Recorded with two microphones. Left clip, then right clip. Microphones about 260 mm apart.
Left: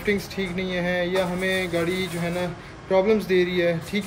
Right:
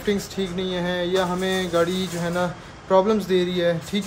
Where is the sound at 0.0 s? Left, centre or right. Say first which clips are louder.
Even; centre.